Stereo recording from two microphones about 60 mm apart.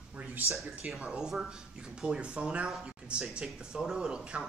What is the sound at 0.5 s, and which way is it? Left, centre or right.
Speech, centre.